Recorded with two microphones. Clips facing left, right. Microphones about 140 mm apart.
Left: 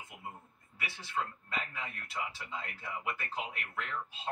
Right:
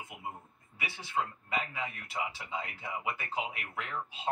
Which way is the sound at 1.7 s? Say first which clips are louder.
Right 4 dB; 10° right (ahead or behind).